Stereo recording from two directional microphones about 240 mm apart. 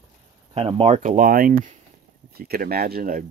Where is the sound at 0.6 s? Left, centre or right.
Right.